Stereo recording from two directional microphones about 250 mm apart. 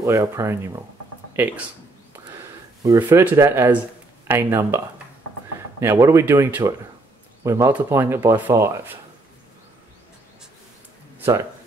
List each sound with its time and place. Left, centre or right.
0.0 s speech: centre
2.8 s speech: centre